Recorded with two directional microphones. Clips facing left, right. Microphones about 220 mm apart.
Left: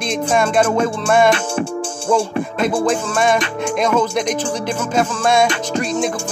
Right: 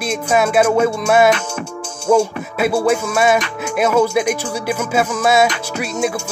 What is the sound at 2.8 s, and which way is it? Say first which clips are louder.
Music: right 2 dB; 10° right (ahead or behind).